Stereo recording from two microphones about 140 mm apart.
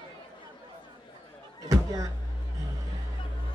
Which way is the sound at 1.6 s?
25° right (ahead or behind).